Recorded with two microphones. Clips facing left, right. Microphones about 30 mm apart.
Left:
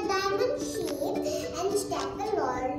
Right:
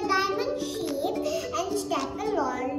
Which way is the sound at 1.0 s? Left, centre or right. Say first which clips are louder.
Right 3 dB; right.